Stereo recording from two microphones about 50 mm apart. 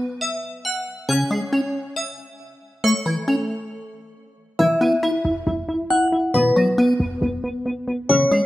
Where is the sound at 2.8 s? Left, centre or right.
Centre.